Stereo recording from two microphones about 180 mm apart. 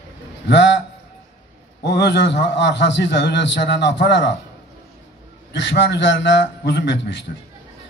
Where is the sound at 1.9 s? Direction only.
75° left (ahead or behind).